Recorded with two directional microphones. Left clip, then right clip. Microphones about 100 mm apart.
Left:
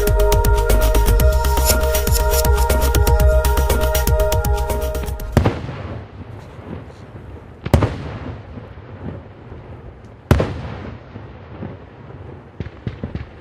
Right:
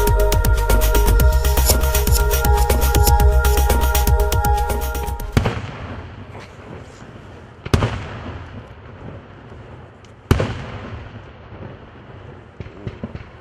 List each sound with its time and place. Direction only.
0.0 s music: centre (ahead or behind)
7.6 s fireworks: 25° right (ahead or behind)
12.5 s a sound: 25° right (ahead or behind)